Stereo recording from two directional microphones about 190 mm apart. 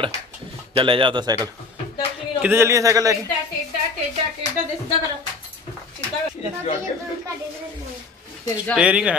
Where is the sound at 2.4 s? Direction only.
10° right (ahead or behind).